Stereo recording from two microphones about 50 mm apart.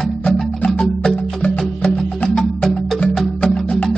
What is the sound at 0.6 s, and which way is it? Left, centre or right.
Music, centre.